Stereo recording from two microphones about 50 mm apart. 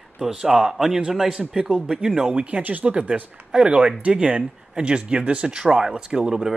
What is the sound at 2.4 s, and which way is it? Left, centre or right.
Speech, right.